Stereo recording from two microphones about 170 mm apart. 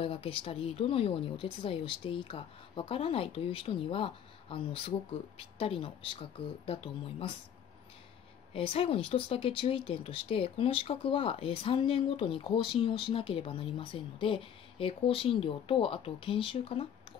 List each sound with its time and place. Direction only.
0.0 s speech: 35° left (ahead or behind)
8.5 s speech: 35° left (ahead or behind)